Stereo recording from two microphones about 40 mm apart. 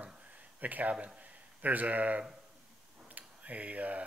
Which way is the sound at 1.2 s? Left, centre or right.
Right.